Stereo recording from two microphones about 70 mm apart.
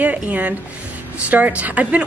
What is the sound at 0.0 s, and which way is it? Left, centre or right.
Speech, right.